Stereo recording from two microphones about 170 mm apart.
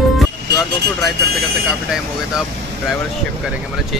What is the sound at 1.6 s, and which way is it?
Speech, 5° right (ahead or behind).